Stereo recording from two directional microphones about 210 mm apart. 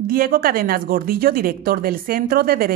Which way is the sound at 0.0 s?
45° right (ahead or behind).